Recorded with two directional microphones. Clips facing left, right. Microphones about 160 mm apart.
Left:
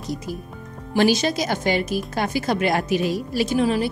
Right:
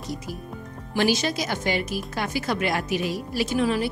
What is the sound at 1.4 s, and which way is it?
A woman's voice, 35° left (ahead or behind).